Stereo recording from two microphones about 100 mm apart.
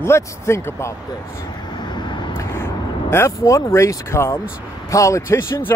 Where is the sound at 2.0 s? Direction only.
50° left (ahead or behind).